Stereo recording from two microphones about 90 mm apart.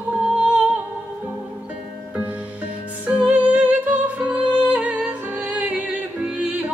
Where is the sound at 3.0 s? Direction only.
15° right (ahead or behind).